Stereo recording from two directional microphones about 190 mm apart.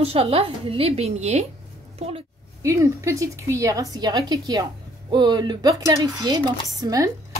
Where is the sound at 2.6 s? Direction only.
15° right (ahead or behind).